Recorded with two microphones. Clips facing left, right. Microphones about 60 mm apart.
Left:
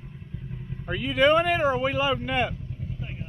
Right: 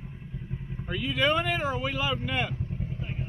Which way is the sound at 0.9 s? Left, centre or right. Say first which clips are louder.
Left 6 dB; centre.